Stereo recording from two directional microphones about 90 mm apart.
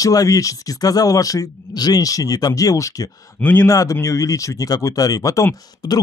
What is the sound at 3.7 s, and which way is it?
A man's voice, 40° left (ahead or behind).